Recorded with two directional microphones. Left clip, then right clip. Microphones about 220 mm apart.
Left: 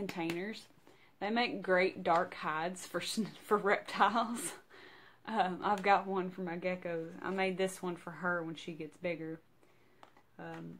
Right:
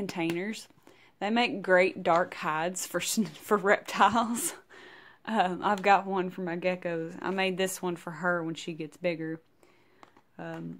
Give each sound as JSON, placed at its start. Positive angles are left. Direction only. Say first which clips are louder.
{"t": 0.1, "sound": "speech", "louder": "right 6 dB", "side_deg": -40}